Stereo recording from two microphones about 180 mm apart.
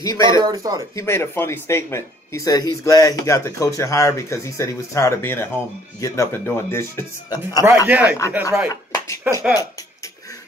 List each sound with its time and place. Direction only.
0.0 s speech: 20° left (ahead or behind)
0.4 s speech: 20° right (ahead or behind)
0.9 s speech: 15° left (ahead or behind)
7.6 s speech: 10° right (ahead or behind)
8.9 s music: 15° left (ahead or behind)